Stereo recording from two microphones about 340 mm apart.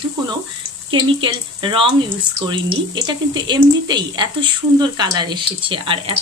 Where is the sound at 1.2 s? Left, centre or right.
Centre.